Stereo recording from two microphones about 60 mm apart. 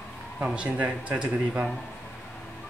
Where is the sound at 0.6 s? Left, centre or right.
Right.